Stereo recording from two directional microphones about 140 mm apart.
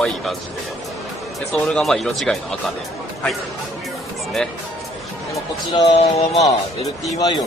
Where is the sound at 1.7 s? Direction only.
Centre (ahead or behind).